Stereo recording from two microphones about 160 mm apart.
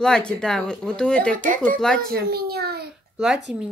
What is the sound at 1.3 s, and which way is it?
Speech, 55° right (ahead or behind).